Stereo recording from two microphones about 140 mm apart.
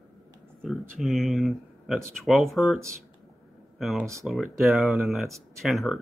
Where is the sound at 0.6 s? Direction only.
Centre (ahead or behind).